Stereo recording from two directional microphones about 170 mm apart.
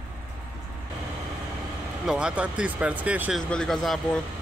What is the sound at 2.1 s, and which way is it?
Speech, 5° right (ahead or behind).